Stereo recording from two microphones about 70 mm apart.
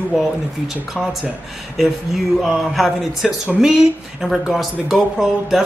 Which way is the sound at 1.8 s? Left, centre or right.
Centre.